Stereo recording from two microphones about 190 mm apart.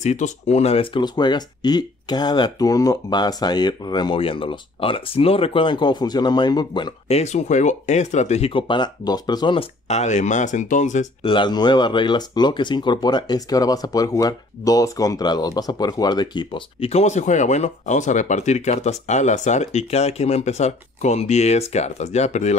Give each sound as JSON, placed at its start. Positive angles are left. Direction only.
{"t": 0.0, "sound": "speech", "side_deg": 35}
{"t": 11.2, "sound": "speech", "side_deg": 25}